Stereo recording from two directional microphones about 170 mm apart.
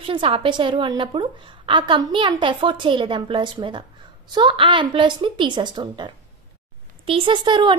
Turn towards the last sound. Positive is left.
turn(degrees=-25)  # may be behind; listen again after turning